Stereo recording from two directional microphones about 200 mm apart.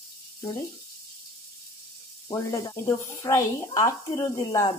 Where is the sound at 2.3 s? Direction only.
15° left (ahead or behind).